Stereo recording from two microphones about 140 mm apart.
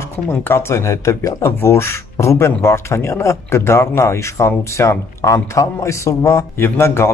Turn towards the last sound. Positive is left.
turn(degrees=20)  # may be behind; listen again after turning